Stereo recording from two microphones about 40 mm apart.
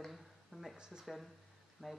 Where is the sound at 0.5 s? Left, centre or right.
Right.